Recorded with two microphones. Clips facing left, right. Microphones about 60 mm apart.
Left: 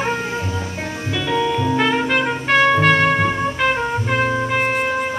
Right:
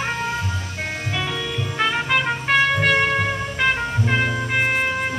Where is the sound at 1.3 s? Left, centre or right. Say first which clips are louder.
Left 7 dB; centre.